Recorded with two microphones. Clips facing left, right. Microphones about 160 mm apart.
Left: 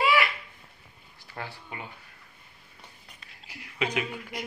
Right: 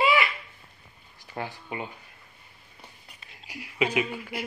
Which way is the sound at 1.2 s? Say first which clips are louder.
Right 4 dB; 15° right (ahead or behind).